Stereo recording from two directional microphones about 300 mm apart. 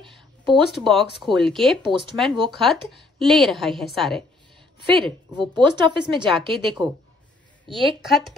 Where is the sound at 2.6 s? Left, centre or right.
Centre.